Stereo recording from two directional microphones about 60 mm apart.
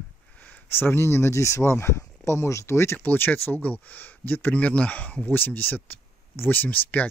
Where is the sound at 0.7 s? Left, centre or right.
Left.